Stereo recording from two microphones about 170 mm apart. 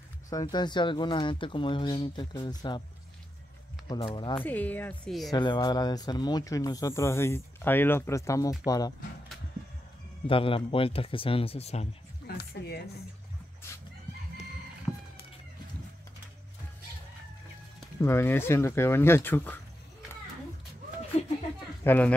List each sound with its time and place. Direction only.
0.3 s speech: 25° left (ahead or behind)
3.9 s speech: 30° left (ahead or behind)
4.4 s speech: 10° left (ahead or behind)
5.3 s speech: 25° left (ahead or behind)
10.2 s speech: 30° left (ahead or behind)
12.3 s speech: 70° left (ahead or behind)
18.0 s speech: 15° left (ahead or behind)
21.1 s a sound: 40° left (ahead or behind)
21.8 s speech: 10° left (ahead or behind)